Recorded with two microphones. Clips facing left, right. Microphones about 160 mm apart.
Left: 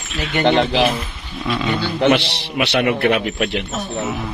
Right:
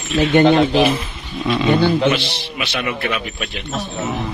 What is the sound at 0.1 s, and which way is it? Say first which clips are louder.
Speech: right 5 dB; 50° right (ahead or behind).